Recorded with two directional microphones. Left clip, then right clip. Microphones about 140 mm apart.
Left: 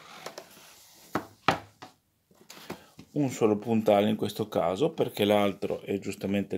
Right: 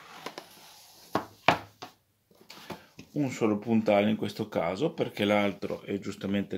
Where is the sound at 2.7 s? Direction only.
40° left (ahead or behind).